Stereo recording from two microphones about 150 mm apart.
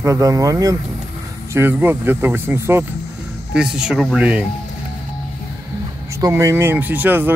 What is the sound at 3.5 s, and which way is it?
Speech, 5° right (ahead or behind).